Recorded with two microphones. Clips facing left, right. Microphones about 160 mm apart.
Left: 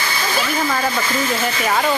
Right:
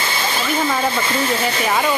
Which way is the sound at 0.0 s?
25° right (ahead or behind).